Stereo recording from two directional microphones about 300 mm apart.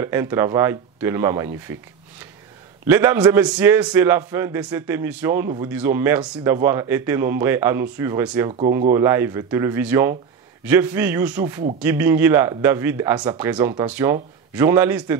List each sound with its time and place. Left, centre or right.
0.0 s speech: centre